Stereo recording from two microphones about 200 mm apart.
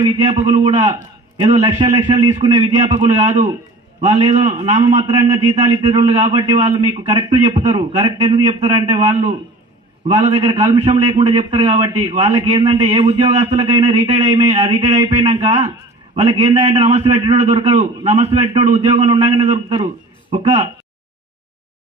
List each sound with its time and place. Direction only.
0.0 s a man's voice: 25° right (ahead or behind)
12.5 s a man's voice: 20° right (ahead or behind)
13.6 s speech: 25° right (ahead or behind)
13.9 s a man's voice: 35° right (ahead or behind)
15.3 s a man's voice: 25° right (ahead or behind)